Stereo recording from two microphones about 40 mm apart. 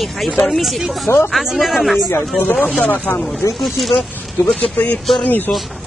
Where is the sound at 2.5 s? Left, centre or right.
Left.